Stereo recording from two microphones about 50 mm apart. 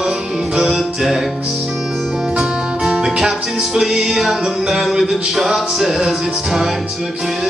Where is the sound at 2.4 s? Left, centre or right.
Centre.